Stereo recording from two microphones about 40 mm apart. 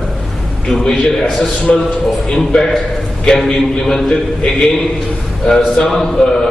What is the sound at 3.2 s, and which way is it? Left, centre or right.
Speech, centre.